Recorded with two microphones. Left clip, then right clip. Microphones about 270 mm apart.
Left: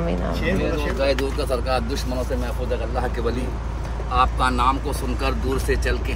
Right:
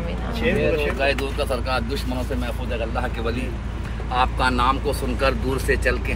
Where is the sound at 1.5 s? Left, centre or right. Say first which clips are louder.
Left 1 dB; centre.